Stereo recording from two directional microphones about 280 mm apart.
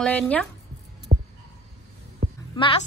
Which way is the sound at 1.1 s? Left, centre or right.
Right.